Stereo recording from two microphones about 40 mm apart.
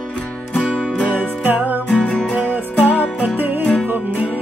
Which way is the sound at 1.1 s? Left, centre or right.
Right.